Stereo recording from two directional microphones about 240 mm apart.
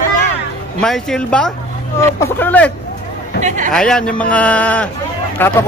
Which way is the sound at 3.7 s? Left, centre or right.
Centre.